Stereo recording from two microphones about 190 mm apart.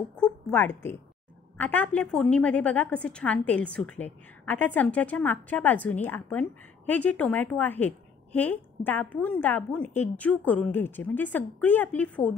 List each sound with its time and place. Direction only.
0.1 s a woman's voice: 10° left (ahead or behind)